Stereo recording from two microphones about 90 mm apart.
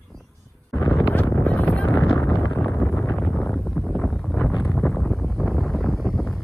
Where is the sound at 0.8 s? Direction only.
35° left (ahead or behind).